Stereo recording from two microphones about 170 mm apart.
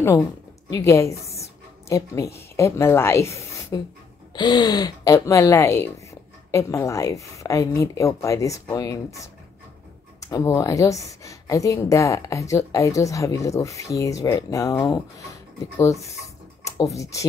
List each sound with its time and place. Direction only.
0.7 s speech: 20° left (ahead or behind)
10.2 s speech: 15° left (ahead or behind)